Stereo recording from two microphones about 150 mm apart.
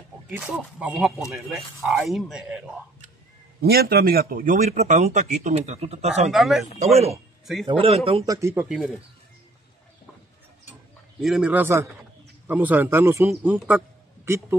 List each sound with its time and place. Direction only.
0.4 s speech: 5° right (ahead or behind)
3.6 s speech: 90° right; by 4.6 s 65° right (ahead or behind)
4.6 s speech: 50° right (ahead or behind)
6.3 s speech: centre (ahead or behind)
6.8 s a man's voice: 45° right (ahead or behind)
8.3 s speech: 20° right (ahead or behind)
8.6 s speech: 5° right (ahead or behind)
11.1 s speech: 5° right (ahead or behind)